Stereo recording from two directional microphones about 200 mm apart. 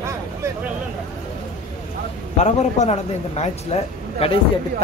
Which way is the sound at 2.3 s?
35° left (ahead or behind).